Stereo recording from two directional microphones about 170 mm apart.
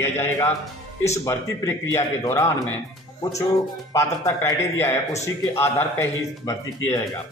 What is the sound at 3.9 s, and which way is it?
A man's voice, 15° left (ahead or behind).